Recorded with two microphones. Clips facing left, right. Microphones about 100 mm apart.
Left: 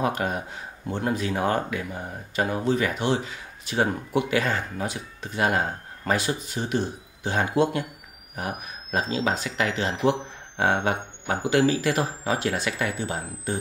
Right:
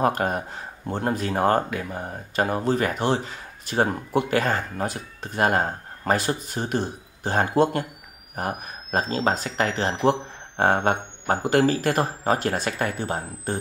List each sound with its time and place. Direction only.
0.0 s speech: 45° right (ahead or behind)